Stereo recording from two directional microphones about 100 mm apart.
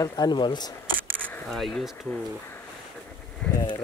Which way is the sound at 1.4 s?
Centre (ahead or behind).